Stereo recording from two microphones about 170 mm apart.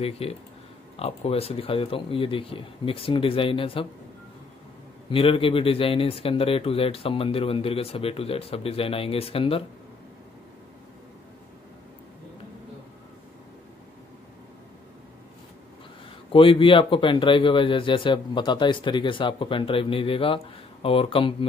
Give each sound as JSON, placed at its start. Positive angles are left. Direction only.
{"t": 0.0, "sound": "speech", "side_deg": 35}
{"t": 5.1, "sound": "speech", "side_deg": 30}
{"t": 16.3, "sound": "speech", "side_deg": 30}